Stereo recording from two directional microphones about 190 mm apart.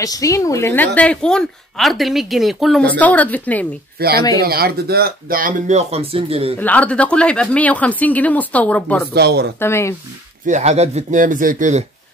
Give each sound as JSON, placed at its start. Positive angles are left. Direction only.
{"t": 0.0, "sound": "a woman's voice", "side_deg": 15}
{"t": 4.0, "sound": "speech", "side_deg": -55}
{"t": 6.6, "sound": "a woman's voice", "side_deg": 10}
{"t": 9.1, "sound": "speech", "side_deg": -55}
{"t": 9.6, "sound": "a woman's voice", "side_deg": 15}
{"t": 10.4, "sound": "speech", "side_deg": -40}